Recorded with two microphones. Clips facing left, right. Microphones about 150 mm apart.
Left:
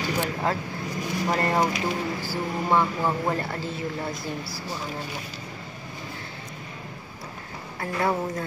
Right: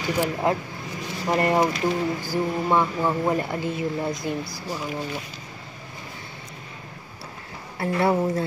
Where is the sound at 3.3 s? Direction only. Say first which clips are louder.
Right 4 dB; 15° right (ahead or behind).